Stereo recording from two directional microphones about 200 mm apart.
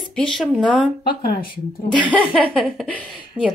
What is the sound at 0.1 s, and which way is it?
Speech, 5° left (ahead or behind).